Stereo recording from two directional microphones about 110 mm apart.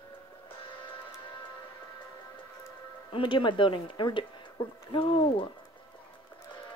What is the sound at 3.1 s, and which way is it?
Speech, 50° left (ahead or behind).